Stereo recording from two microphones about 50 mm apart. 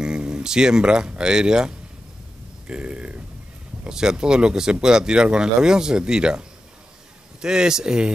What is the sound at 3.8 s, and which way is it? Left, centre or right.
Speech, centre.